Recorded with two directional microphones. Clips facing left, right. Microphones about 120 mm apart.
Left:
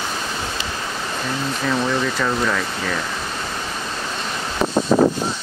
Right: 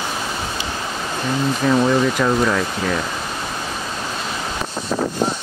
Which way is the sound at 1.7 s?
15° right (ahead or behind).